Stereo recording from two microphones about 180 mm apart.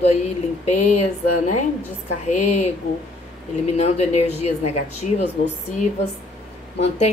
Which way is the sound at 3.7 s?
35° left (ahead or behind).